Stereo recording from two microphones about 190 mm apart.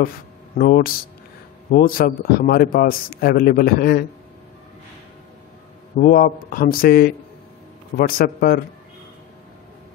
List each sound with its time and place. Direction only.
0.6 s a man's voice: 50° left (ahead or behind)
5.9 s a man's voice: 45° left (ahead or behind)
8.2 s a man's voice: 50° left (ahead or behind)